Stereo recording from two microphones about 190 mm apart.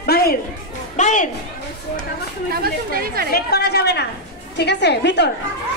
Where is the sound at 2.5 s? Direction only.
55° right (ahead or behind).